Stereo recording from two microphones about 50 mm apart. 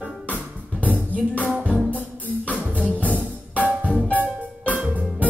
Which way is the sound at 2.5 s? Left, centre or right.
Right.